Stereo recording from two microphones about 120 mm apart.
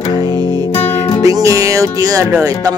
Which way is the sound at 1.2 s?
25° right (ahead or behind).